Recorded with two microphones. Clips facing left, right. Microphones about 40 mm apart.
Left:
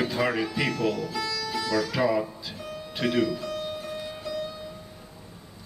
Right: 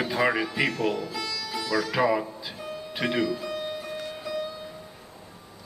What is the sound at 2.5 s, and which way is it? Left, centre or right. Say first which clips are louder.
Music: right 1 dB; centre.